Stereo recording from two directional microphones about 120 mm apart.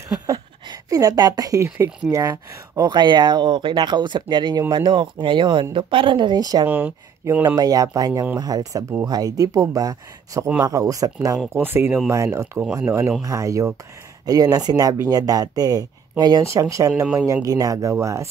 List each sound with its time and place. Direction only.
0.3 s speech: 30° right (ahead or behind)